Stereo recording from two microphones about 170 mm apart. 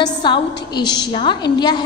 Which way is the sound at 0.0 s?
25° left (ahead or behind).